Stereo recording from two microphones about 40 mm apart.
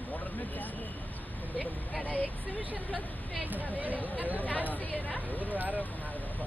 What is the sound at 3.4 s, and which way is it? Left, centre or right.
Speech, right.